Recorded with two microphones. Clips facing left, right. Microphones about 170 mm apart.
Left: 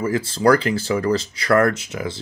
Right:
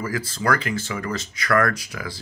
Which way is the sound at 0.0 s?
25° left (ahead or behind).